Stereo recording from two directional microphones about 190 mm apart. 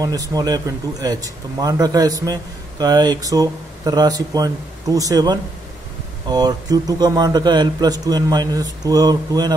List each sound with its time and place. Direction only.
0.0 s a man's voice: 20° right (ahead or behind)